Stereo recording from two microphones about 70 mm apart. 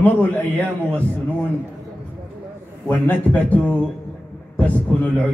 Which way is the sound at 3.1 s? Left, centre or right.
Left.